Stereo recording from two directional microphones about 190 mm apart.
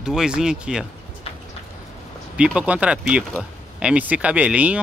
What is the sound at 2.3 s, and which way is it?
Speech, 5° right (ahead or behind).